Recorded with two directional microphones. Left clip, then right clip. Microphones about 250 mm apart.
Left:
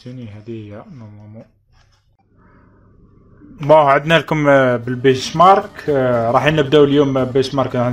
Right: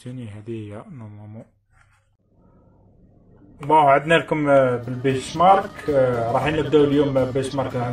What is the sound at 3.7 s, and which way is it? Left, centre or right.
Speech, left.